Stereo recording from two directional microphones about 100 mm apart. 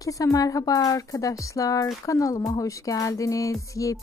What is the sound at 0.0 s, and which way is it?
Speech, 35° left (ahead or behind).